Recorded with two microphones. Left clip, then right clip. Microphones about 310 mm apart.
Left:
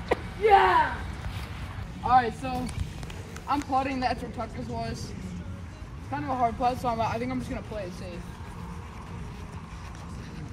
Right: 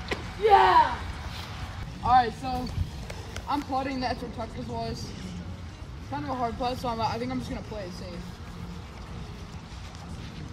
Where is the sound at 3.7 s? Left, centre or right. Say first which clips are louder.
Left 3 dB; centre.